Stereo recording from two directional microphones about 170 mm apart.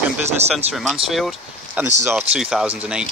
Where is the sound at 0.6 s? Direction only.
40° right (ahead or behind).